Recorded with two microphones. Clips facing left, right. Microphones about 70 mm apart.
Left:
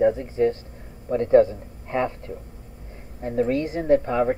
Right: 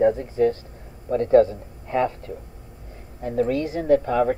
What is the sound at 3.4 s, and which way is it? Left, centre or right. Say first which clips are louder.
Speech: even; left.